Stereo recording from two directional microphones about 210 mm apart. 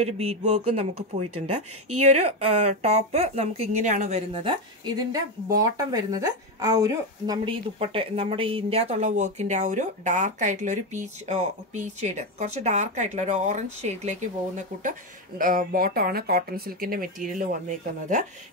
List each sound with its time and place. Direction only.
0.0 s speech: 30° right (ahead or behind)
2.4 s a woman's voice: 30° right (ahead or behind)